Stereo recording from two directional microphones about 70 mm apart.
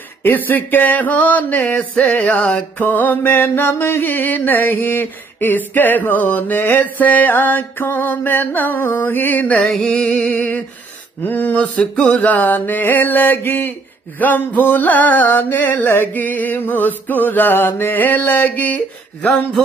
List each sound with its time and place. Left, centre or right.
0.2 s music: left
1.7 s a sound: centre
2.2 s music: left
9.7 s music: centre
11.2 s music: left
19.2 s a sound: centre